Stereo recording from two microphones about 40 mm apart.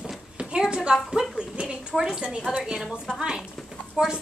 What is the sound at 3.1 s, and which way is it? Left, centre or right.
Speech, centre.